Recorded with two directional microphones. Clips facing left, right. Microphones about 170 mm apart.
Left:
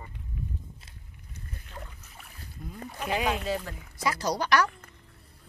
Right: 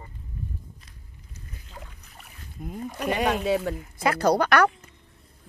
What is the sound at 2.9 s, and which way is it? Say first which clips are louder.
Speech: right 4 dB; 70° right (ahead or behind).